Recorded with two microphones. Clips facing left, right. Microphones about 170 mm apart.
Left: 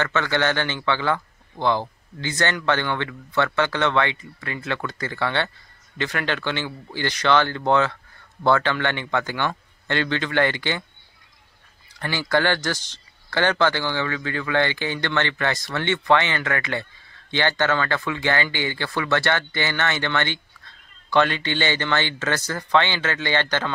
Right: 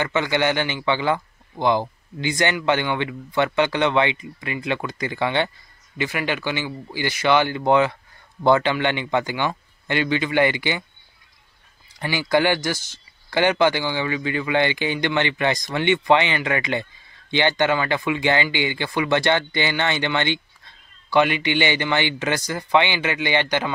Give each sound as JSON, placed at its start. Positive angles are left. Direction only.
{"t": 0.0, "sound": "speech", "side_deg": -15}
{"t": 12.0, "sound": "speech", "side_deg": -15}